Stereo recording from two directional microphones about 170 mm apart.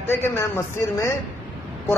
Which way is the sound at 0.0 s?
15° left (ahead or behind).